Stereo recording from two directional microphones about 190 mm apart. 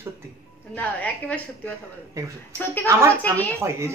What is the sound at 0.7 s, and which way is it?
Speech, 5° left (ahead or behind).